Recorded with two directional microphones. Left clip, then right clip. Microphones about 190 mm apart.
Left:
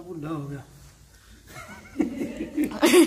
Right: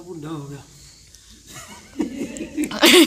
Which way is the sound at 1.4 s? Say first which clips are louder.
Right 2 dB; 20° left (ahead or behind).